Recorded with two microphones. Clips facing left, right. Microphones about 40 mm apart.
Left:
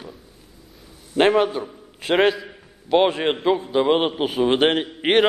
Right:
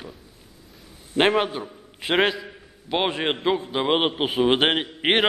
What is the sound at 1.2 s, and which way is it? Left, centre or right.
A man's voice, centre.